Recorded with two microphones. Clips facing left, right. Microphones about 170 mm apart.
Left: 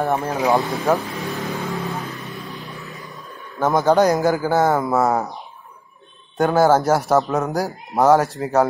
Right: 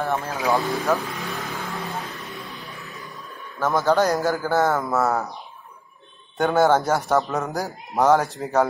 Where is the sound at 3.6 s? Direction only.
20° left (ahead or behind).